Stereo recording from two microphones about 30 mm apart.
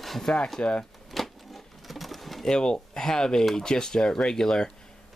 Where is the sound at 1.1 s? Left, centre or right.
Centre.